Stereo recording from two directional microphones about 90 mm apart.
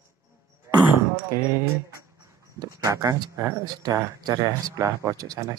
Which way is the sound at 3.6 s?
50° right (ahead or behind).